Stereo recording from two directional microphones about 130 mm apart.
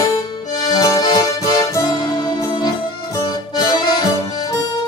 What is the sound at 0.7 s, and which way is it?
Accordion, 30° left (ahead or behind).